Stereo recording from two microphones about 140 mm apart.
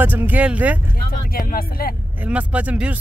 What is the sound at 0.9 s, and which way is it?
Speech, 90° left.